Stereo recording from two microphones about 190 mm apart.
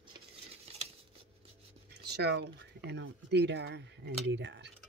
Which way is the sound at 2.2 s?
60° right (ahead or behind).